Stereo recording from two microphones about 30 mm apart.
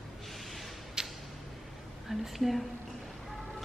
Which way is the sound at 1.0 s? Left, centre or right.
Right.